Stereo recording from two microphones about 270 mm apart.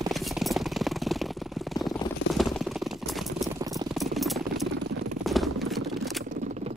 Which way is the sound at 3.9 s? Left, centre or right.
Centre.